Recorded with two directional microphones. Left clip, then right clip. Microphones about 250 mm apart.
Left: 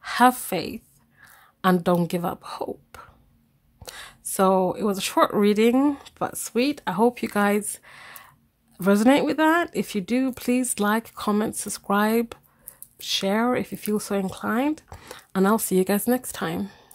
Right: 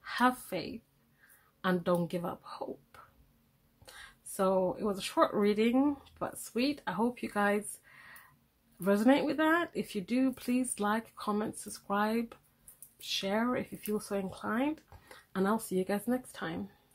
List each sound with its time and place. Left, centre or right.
0.0 s a woman's voice: left